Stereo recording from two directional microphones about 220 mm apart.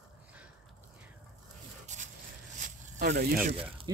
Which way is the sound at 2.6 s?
40° right (ahead or behind).